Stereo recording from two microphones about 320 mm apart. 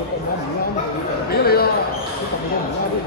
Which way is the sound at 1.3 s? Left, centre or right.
Left.